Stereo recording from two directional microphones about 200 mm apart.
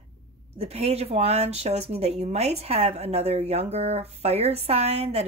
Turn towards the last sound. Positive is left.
turn(degrees=-30)  # may be behind; listen again after turning